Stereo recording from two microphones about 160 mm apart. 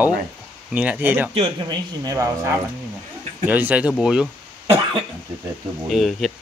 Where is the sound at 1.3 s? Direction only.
35° right (ahead or behind); by 4.3 s 5° right (ahead or behind).